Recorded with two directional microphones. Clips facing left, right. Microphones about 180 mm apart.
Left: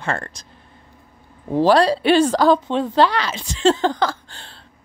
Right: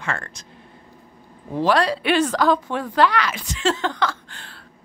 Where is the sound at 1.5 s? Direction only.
30° left (ahead or behind).